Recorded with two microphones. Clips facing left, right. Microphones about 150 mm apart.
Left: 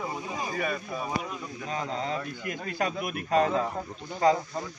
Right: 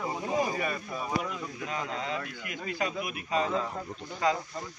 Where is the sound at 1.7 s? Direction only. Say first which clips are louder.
Left 4 dB; 35° left (ahead or behind); by 3.6 s 55° left (ahead or behind).